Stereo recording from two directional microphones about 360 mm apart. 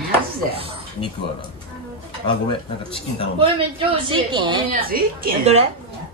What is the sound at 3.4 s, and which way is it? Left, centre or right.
A woman's voice, centre.